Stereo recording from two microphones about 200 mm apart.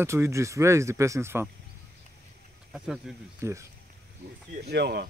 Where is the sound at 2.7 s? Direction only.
5° right (ahead or behind).